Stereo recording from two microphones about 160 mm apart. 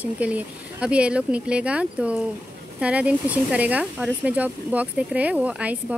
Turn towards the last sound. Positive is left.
turn(degrees=-10)  # may be behind; listen again after turning